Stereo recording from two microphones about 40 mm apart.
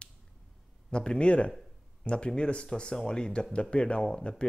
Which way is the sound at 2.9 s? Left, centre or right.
Centre.